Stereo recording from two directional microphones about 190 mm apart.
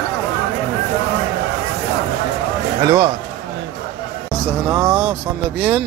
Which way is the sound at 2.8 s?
20° right (ahead or behind).